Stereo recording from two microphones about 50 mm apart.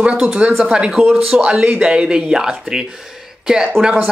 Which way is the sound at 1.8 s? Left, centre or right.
Centre.